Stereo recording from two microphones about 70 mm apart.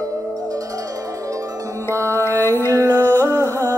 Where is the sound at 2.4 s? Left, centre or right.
Left.